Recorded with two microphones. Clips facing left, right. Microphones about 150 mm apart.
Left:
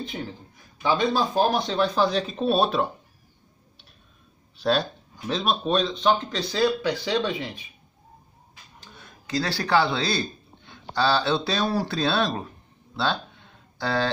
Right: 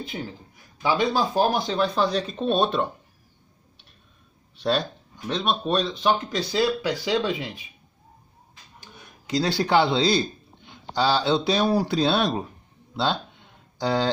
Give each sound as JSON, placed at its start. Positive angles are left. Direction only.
{"t": 0.9, "sound": "speech", "side_deg": -5}
{"t": 4.6, "sound": "speech", "side_deg": 0}
{"t": 8.7, "sound": "speech", "side_deg": -20}